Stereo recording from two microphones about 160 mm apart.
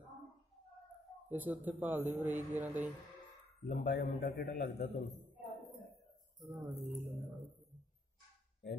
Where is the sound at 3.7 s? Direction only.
85° left.